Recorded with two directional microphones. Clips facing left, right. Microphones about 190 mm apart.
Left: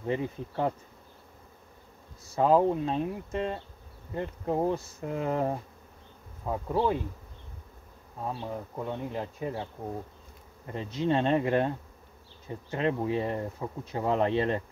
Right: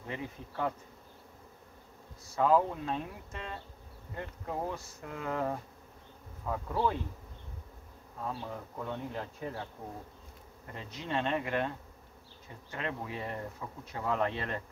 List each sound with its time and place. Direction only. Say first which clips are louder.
0.0 s speech: left 9 dB; 30° left (ahead or behind)
2.3 s speech: left 4 dB; 25° left (ahead or behind)
8.2 s speech: left 4 dB; 20° left (ahead or behind)
10.7 s speech: left 9 dB; 30° left (ahead or behind)
12.7 s speech: left 10 dB; 30° left (ahead or behind)